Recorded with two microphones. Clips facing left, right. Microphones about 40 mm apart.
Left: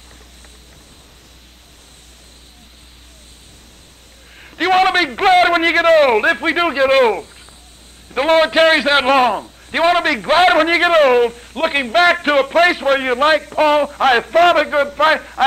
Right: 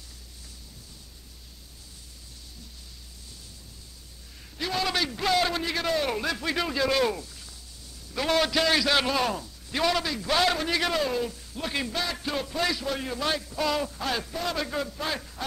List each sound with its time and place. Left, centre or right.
4.4 s a sound: left
5.6 s a man's voice: left
10.0 s a man's voice: left
10.3 s a man's voice: left